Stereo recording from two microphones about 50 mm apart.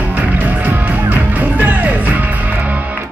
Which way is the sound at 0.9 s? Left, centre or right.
Right.